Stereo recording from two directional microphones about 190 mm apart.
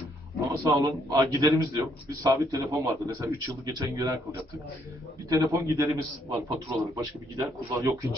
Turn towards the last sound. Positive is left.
turn(degrees=-15)  # may be behind; listen again after turning